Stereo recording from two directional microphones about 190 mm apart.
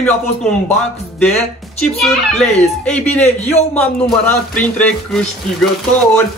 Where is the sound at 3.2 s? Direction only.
35° left (ahead or behind).